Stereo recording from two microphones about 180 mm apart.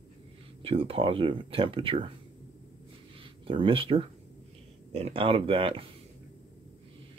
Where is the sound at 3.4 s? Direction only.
30° right (ahead or behind).